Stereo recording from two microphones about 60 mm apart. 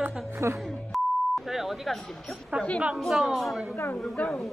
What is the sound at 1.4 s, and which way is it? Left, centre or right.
Speech, centre.